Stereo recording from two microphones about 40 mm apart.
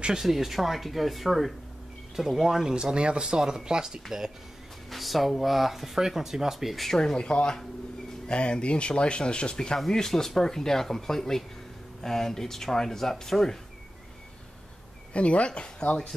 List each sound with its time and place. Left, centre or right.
0.2 s speech: centre
4.9 s speech: centre
6.8 s speech: centre
15.1 s speech: left